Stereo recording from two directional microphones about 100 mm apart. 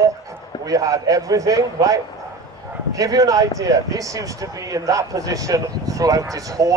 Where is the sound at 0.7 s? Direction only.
35° right (ahead or behind).